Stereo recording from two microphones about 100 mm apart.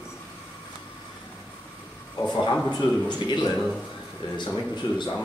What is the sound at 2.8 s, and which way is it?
Speech, 45° left (ahead or behind).